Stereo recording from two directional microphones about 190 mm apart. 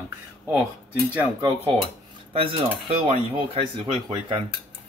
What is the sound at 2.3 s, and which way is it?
Speech, 30° right (ahead or behind).